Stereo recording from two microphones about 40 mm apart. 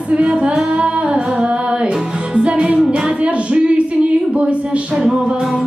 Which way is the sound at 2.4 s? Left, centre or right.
Right.